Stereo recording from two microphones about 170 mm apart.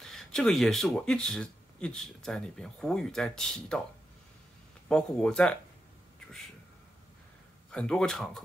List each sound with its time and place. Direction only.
0.0 s speech: 5° left (ahead or behind)
4.8 s speech: 5° left (ahead or behind)
7.7 s speech: 5° left (ahead or behind)